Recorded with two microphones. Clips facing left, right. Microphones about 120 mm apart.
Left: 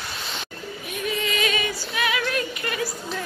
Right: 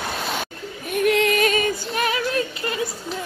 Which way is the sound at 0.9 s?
65° right (ahead or behind).